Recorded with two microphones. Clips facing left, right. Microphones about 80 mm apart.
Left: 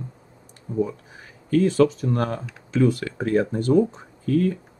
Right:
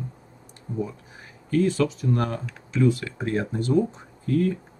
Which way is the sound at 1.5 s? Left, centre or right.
Left.